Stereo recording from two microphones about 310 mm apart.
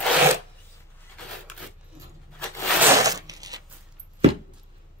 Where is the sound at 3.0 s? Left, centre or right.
Centre.